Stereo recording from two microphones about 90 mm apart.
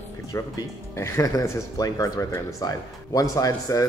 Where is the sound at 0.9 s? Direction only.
30° left (ahead or behind).